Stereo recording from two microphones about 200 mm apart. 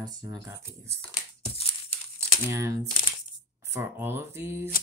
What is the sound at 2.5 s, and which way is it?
Speech, 15° right (ahead or behind).